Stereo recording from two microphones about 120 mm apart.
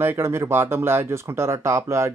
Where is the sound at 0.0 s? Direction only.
20° right (ahead or behind).